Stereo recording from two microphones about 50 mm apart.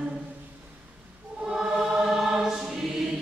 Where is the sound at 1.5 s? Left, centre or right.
Centre.